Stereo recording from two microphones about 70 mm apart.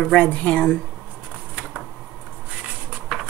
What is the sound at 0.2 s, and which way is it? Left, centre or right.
Speech, centre.